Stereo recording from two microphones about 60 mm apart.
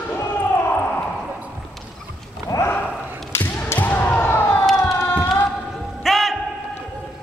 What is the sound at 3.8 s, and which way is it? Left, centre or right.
Basketball bounce, left.